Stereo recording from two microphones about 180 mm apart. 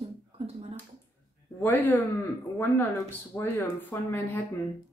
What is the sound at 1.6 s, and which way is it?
Speech, 10° left (ahead or behind).